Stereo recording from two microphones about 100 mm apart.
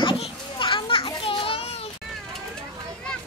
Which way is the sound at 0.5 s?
60° left (ahead or behind).